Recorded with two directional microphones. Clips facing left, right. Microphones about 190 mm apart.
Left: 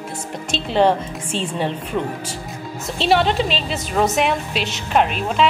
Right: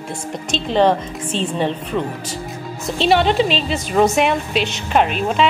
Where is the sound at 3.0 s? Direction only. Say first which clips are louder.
Right 2 dB; centre (ahead or behind).